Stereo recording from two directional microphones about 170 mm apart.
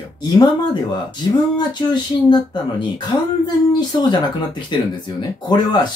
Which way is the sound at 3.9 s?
25° left (ahead or behind).